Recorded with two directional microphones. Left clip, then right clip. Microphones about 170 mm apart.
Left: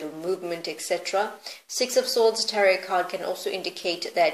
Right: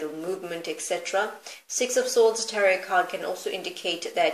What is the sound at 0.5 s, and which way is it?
Speech, 35° left (ahead or behind).